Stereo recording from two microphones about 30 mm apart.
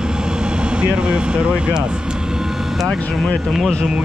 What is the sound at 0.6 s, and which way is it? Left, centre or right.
Speech, right.